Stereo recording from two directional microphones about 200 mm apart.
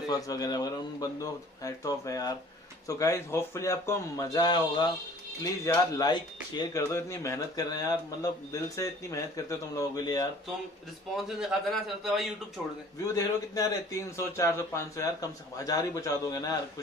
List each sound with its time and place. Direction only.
0.1 s speech: 20° left (ahead or behind)
11.2 s a man's voice: centre (ahead or behind)
13.0 s speech: 15° left (ahead or behind)